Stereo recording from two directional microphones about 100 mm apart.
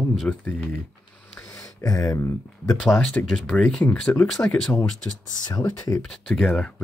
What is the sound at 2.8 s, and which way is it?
Speech, 10° left (ahead or behind).